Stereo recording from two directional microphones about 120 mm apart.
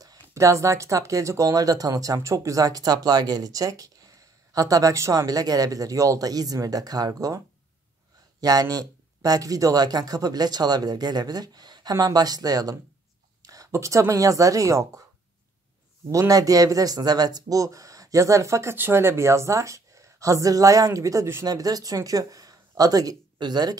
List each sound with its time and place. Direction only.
0.3 s speech: 25° right (ahead or behind)
16.1 s speech: 30° right (ahead or behind)